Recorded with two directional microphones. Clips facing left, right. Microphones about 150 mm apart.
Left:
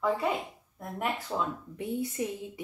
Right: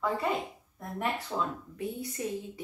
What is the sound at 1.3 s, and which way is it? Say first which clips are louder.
A woman's voice: left 1 dB; 15° left (ahead or behind).